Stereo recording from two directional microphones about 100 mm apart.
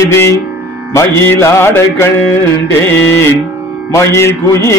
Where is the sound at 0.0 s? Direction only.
30° left (ahead or behind).